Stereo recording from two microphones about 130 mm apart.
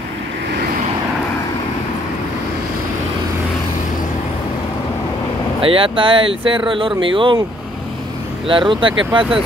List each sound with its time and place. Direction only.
5.6 s speech: 45° right (ahead or behind)
8.5 s speech: 40° right (ahead or behind)